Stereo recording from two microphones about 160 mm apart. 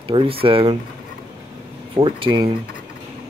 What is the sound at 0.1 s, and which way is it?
Speech, 35° right (ahead or behind).